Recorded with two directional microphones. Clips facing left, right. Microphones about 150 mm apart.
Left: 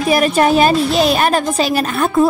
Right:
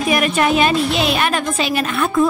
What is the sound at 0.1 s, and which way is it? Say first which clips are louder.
Speech: left 4 dB; 35° left (ahead or behind).